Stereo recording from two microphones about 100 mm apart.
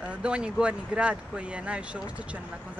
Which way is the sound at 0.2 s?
10° right (ahead or behind).